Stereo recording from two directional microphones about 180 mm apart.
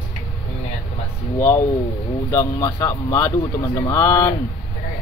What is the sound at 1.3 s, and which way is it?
Speech, 15° left (ahead or behind).